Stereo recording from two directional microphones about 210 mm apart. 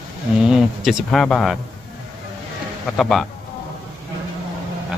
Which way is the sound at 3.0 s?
Centre (ahead or behind).